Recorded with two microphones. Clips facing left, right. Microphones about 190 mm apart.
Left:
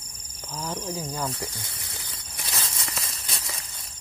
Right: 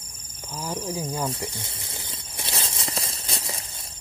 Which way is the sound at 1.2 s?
25° right (ahead or behind).